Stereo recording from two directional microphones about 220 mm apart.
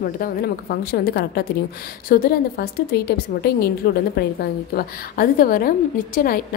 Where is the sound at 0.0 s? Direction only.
40° left (ahead or behind).